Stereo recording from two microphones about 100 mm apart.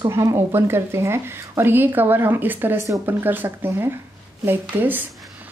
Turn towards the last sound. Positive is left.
turn(degrees=-20)  # may be behind; listen again after turning